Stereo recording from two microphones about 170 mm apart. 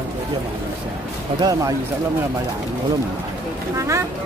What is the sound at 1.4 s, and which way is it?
Speech, 20° right (ahead or behind).